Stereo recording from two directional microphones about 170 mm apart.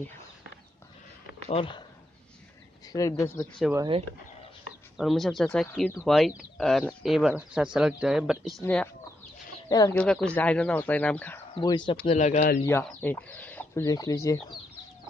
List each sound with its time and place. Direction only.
1.5 s speech: 30° left (ahead or behind)
2.9 s speech: 20° left (ahead or behind)
4.9 s speech: centre (ahead or behind)
9.7 s speech: 20° left (ahead or behind)
9.9 s speech: 5° left (ahead or behind)
11.5 s speech: 25° left (ahead or behind)
12.2 s speech: 45° left (ahead or behind)
12.6 s speech: 15° left (ahead or behind)
13.8 s speech: 20° left (ahead or behind)